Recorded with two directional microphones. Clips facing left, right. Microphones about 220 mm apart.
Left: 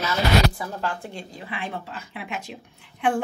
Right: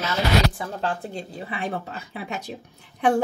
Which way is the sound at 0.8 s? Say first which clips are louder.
Right 4 dB; 35° right (ahead or behind).